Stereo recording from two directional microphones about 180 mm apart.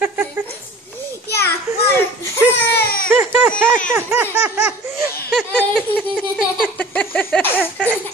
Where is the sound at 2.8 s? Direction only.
55° left (ahead or behind).